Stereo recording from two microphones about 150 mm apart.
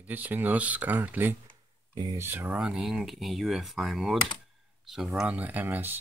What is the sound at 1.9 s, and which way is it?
Speech, 30° right (ahead or behind).